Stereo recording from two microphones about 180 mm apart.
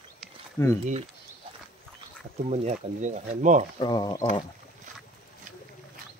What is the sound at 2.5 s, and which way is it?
Speech, 40° right (ahead or behind).